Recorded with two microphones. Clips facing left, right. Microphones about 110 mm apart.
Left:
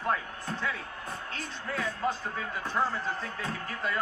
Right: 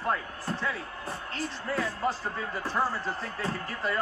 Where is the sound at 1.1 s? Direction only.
35° right (ahead or behind).